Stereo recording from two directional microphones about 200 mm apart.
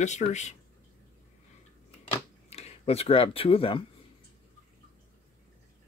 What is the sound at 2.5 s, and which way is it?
Speech, 30° left (ahead or behind).